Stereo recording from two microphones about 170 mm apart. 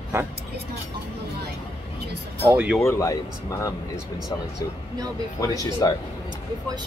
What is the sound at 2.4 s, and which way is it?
Speech, 10° right (ahead or behind).